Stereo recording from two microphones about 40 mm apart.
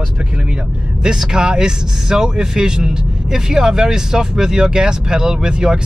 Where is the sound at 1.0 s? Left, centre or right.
Centre.